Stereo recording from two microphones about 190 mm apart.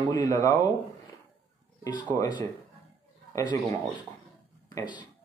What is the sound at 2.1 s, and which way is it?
Speech, 20° left (ahead or behind).